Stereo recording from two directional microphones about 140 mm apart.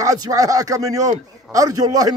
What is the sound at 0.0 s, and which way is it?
A man's voice, 25° right (ahead or behind).